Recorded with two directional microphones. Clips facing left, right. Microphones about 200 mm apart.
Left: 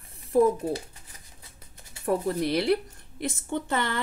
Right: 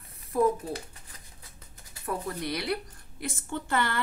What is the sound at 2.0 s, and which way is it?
A woman's voice, 30° left (ahead or behind).